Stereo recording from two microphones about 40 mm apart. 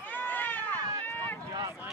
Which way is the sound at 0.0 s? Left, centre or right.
Left.